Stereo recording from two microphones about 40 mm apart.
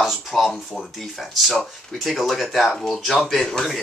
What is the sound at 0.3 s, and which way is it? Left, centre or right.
Speech, centre.